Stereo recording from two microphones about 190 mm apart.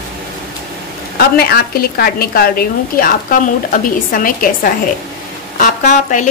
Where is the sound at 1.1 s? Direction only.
55° left (ahead or behind).